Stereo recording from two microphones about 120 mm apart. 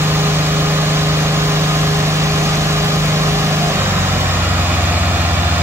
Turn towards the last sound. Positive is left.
turn(degrees=-15)  # may be behind; listen again after turning